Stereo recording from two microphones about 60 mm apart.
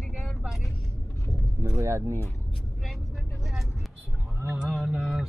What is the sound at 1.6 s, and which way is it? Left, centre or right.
Speech, right.